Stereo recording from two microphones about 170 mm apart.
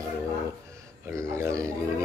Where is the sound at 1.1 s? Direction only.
15° right (ahead or behind).